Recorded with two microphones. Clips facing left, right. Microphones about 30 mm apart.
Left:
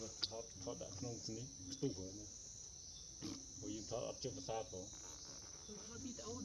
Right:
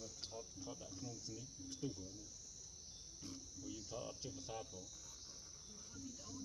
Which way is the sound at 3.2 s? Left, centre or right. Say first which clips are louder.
Left 4 dB; left.